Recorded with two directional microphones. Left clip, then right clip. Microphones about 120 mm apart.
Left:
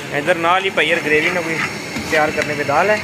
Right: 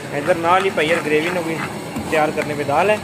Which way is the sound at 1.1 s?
10° right (ahead or behind).